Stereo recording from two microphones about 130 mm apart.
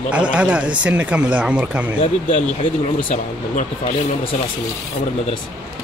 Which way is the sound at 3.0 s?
75° left (ahead or behind).